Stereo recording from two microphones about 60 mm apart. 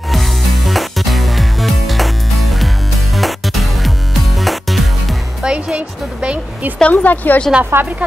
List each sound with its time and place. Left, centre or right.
0.1 s music: centre
5.4 s speech: centre
6.8 s speech: left
7.7 s speech: right